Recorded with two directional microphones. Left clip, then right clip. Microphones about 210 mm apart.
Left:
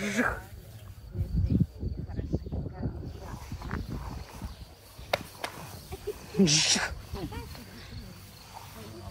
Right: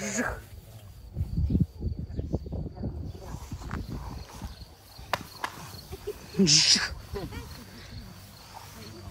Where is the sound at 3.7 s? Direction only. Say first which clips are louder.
Even; 5° right (ahead or behind).